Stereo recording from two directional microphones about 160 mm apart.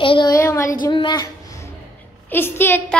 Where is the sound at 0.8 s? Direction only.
30° left (ahead or behind).